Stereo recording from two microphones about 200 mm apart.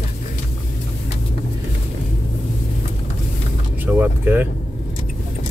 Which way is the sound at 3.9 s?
10° right (ahead or behind).